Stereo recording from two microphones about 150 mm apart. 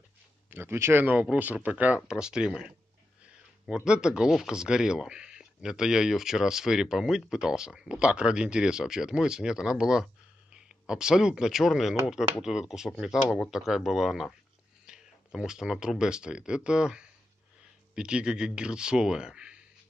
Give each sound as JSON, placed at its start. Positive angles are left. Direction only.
{"t": 0.5, "sound": "speech", "side_deg": -15}